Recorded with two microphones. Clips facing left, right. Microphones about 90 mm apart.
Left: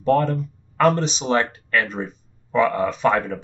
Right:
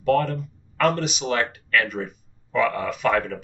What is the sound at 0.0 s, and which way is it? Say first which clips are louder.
Speech: left 2 dB; 30° left (ahead or behind).